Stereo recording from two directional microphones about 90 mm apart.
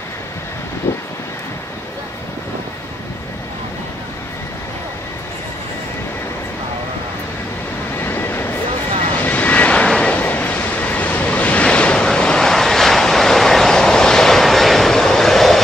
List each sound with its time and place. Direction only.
0.8 s vehicle: 30° left (ahead or behind)
8.0 s vehicle: 25° left (ahead or behind); by 15.6 s 5° left (ahead or behind)